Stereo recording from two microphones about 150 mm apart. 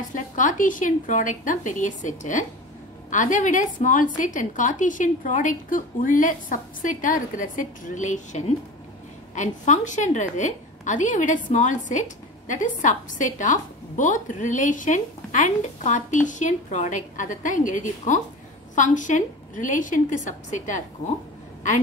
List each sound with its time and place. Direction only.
0.1 s a woman's voice: 60° left (ahead or behind)